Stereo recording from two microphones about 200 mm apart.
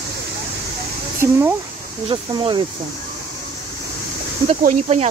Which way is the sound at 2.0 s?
25° right (ahead or behind).